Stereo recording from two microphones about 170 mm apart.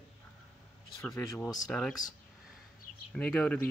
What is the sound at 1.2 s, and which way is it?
Speech, 20° left (ahead or behind).